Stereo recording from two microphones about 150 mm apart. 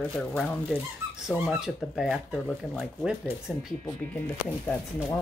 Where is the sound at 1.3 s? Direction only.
5° right (ahead or behind).